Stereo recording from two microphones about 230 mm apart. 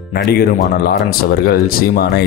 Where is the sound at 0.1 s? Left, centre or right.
Left.